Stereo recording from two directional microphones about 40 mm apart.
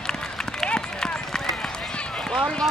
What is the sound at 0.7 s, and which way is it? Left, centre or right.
Run, centre.